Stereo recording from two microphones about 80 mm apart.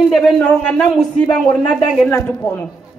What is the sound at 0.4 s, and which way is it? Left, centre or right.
Speech, centre.